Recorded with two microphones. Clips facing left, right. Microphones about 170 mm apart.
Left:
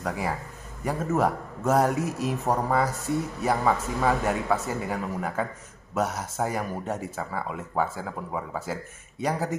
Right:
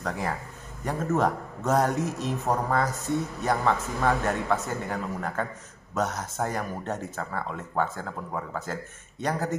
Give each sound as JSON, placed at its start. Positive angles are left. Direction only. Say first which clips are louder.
{"t": 0.0, "sound": "speech", "louder": "left 1 dB", "side_deg": 5}